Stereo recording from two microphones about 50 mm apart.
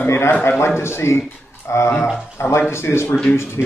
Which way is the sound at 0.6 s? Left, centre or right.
Left.